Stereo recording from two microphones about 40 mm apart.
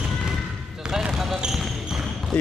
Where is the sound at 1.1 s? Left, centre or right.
Centre.